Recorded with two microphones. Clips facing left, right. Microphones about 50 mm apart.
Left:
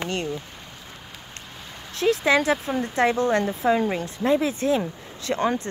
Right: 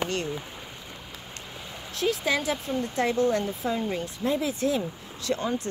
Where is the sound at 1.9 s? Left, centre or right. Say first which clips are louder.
Left 6 dB; left.